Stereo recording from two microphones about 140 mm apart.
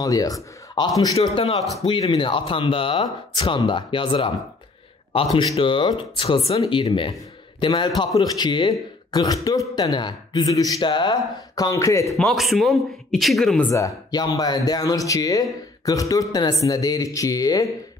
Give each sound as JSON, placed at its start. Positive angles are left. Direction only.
{"t": 0.0, "sound": "a man's voice", "side_deg": 25}
{"t": 1.8, "sound": "a man's voice", "side_deg": 35}
{"t": 12.1, "sound": "a man's voice", "side_deg": 0}
{"t": 13.7, "sound": "a man's voice", "side_deg": 20}